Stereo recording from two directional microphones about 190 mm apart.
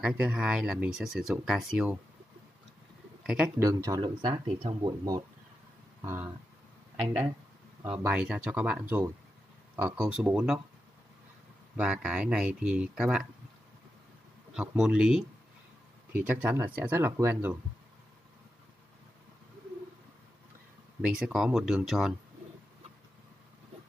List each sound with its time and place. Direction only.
0.0 s speech: 5° right (ahead or behind)
3.4 s speech: 15° right (ahead or behind)
7.8 s speech: 10° right (ahead or behind)
11.7 s speech: 5° right (ahead or behind)
14.5 s speech: 5° right (ahead or behind)
21.1 s speech: 5° right (ahead or behind)